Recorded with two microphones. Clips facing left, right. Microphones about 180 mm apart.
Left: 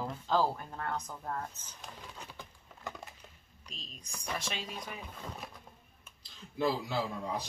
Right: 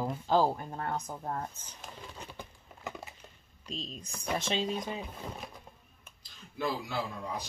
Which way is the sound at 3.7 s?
25° right (ahead or behind).